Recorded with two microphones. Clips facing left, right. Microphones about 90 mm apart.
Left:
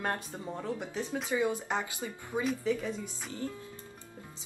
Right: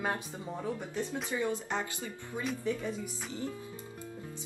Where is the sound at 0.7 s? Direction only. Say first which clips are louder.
Left 1 dB; 15° left (ahead or behind).